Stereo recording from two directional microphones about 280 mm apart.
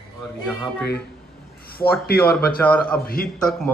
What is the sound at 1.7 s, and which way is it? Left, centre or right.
Speech, left.